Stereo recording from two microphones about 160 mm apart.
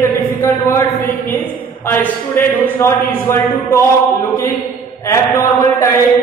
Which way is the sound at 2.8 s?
15° left (ahead or behind).